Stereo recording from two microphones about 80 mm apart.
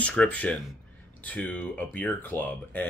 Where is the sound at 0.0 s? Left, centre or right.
Centre.